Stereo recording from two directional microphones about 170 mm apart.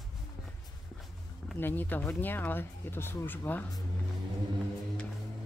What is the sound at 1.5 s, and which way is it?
Speech, 10° left (ahead or behind).